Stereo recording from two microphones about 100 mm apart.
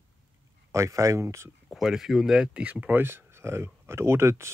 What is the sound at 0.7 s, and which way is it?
Speech, 30° right (ahead or behind).